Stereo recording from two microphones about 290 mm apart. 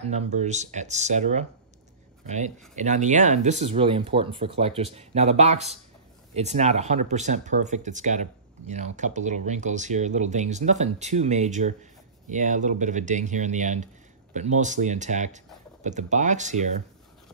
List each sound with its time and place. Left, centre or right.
0.0 s speech: right